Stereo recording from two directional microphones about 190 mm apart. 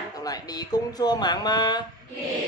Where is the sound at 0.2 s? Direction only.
20° left (ahead or behind).